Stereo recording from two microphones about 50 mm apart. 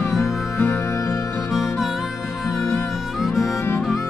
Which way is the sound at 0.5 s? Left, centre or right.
Left.